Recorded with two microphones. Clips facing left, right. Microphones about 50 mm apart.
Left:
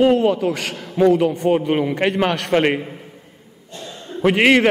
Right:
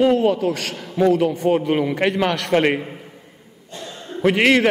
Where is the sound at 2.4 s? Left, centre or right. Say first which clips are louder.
Right 1 dB; centre.